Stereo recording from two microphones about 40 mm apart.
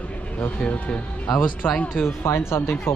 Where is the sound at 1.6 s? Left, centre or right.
Left.